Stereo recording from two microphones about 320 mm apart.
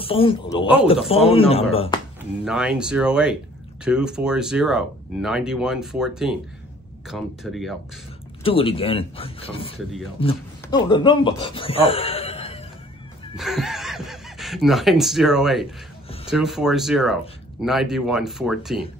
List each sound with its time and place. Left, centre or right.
0.0 s speech: centre
2.4 s speech: centre
8.5 s speech: centre
13.4 s speech: centre